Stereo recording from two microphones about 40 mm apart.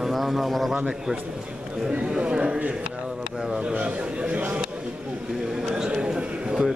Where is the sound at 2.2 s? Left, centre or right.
Right.